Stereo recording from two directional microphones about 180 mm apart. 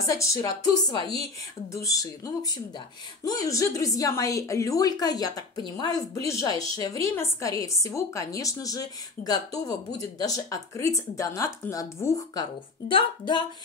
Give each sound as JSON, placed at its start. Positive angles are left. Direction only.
{"t": 0.0, "sound": "a woman's voice", "side_deg": 20}